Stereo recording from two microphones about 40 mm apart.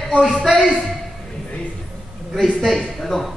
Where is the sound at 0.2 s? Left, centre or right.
Centre.